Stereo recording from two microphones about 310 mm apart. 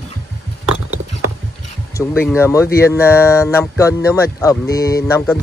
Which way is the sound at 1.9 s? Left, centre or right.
Centre.